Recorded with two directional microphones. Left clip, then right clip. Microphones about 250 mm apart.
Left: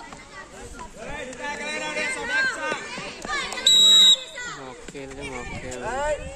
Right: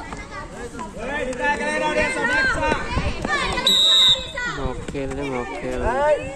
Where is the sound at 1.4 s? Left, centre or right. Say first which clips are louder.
Right 8 dB; centre.